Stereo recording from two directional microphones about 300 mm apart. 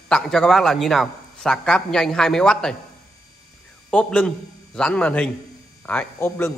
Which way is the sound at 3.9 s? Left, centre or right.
Centre.